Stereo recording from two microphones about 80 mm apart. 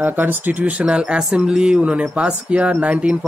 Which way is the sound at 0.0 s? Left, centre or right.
Right.